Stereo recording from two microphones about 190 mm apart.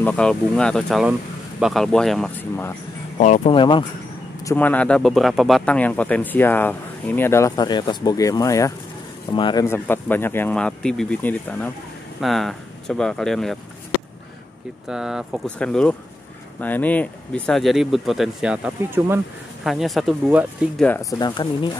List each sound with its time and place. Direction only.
0.0 s speech: 5° left (ahead or behind)
3.2 s speech: 40° left (ahead or behind)
3.5 s speech: 25° left (ahead or behind)
4.5 s speech: 10° left (ahead or behind); by 9.7 s 25° left (ahead or behind)
9.7 s speech: 10° left (ahead or behind)
14.9 s speech: 5° right (ahead or behind)
19.6 s speech: centre (ahead or behind)
20.8 s speech: 15° left (ahead or behind)